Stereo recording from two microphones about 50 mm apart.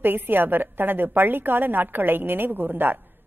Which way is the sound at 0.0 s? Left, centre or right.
Right.